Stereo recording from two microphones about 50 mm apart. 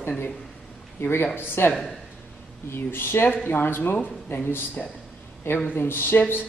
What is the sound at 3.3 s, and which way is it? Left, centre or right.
A man's voice, left.